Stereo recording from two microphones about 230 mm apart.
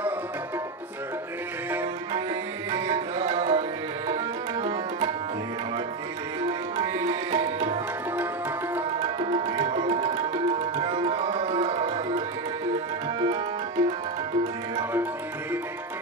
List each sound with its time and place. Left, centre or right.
2.7 s tabla: centre
6.4 s tabla: centre
8.9 s tabla: right
13.2 s tabla: centre